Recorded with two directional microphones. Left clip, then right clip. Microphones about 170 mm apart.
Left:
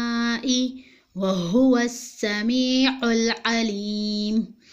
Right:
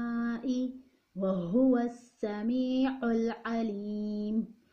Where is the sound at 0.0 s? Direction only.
25° left (ahead or behind).